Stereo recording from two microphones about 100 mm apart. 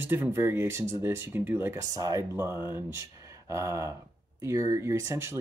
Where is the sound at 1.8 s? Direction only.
35° right (ahead or behind).